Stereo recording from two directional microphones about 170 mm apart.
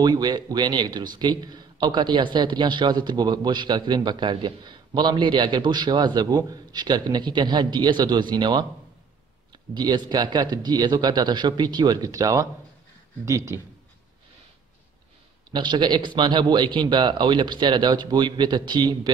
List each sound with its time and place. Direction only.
0.0 s speech: 25° right (ahead or behind)
9.8 s speech: 25° right (ahead or behind)
15.5 s speech: 25° right (ahead or behind)